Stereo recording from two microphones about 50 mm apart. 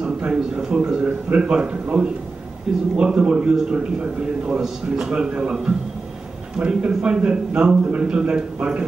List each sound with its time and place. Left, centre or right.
0.0 s a sound: centre
2.7 s a man's voice: centre
6.6 s a man's voice: centre